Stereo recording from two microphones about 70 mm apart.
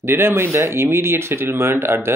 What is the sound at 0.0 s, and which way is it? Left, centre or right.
Speech, right.